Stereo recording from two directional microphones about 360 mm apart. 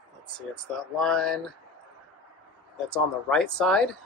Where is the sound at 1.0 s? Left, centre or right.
Centre.